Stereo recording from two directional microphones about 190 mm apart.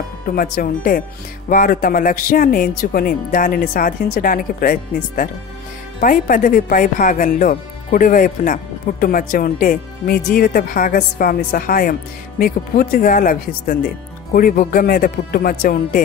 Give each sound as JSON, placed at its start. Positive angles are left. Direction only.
{"t": 0.3, "sound": "speech", "side_deg": 50}